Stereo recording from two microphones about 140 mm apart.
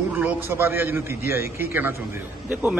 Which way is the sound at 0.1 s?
10° right (ahead or behind).